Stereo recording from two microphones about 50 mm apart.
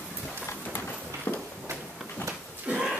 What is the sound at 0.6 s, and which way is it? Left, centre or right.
Run, left.